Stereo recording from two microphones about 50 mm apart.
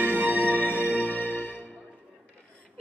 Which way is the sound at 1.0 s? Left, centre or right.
Left.